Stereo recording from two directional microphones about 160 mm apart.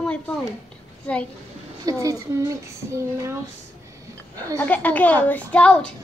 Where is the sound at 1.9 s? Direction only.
20° right (ahead or behind).